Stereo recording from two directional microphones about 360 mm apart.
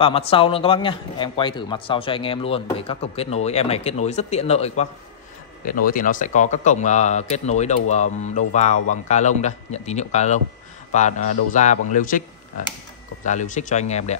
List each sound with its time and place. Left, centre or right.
0.0 s speech: centre
5.9 s speech: left
13.2 s speech: centre